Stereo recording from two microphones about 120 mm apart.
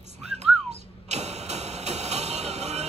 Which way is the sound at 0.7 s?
65° right (ahead or behind).